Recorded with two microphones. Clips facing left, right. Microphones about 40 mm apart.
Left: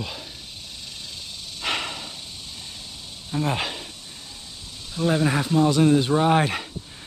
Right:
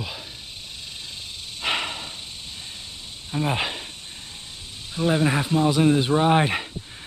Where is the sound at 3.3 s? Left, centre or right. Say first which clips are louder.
Even; centre.